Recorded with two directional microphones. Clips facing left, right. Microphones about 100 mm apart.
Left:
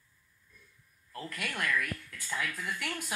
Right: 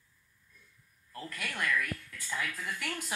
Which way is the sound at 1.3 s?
10° left (ahead or behind).